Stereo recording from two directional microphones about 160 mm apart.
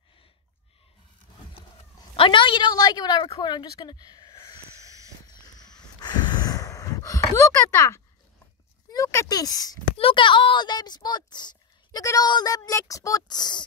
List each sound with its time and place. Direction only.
2.1 s a woman's voice: 30° left (ahead or behind)
5.2 s a sound: 25° left (ahead or behind)
8.9 s speech: 20° left (ahead or behind)
9.9 s speech: 35° left (ahead or behind)